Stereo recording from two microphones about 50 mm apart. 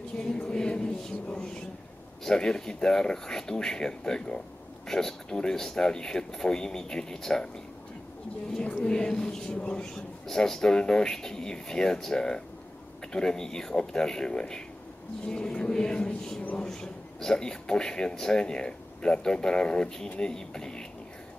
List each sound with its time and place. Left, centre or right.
0.2 s a man's voice: centre
8.8 s a man's voice: centre